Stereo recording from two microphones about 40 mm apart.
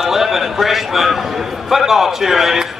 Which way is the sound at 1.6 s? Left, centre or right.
Centre.